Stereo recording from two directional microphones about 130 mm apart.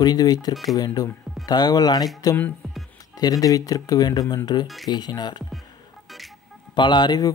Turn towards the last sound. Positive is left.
turn(degrees=35)  # may be behind; listen again after turning